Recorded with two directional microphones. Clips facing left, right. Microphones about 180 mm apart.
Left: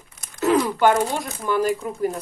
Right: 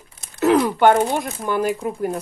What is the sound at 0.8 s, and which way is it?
Speech, 55° right (ahead or behind).